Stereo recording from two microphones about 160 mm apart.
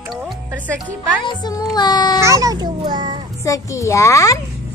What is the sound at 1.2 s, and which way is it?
Speech, 25° left (ahead or behind).